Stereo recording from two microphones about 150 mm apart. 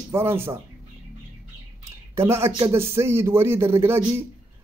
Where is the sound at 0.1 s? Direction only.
15° right (ahead or behind).